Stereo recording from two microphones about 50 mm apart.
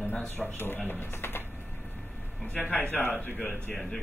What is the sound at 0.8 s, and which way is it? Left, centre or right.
Speech, left.